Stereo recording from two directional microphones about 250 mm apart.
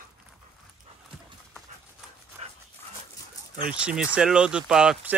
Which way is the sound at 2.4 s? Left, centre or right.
Right.